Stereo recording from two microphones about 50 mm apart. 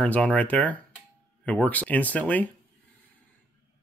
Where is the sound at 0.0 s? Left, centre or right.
Left.